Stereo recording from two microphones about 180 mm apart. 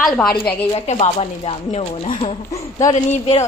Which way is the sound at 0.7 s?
35° left (ahead or behind).